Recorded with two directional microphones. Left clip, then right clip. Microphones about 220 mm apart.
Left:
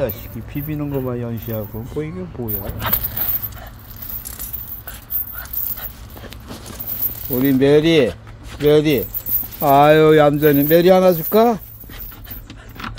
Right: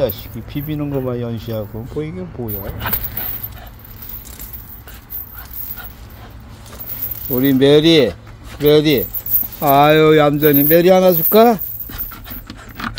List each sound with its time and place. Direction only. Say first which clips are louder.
0.0 s speech: right 4 dB; 15° right (ahead or behind)
7.3 s speech: right 2 dB; 15° right (ahead or behind)